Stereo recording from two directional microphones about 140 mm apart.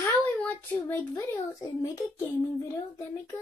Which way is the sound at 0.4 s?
10° left (ahead or behind).